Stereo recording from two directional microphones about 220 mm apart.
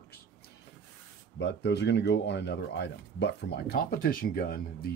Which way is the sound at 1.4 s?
50° left (ahead or behind).